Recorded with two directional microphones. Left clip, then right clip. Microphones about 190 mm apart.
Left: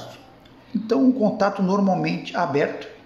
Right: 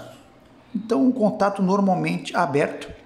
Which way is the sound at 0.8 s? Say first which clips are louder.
Left 1 dB; 10° right (ahead or behind).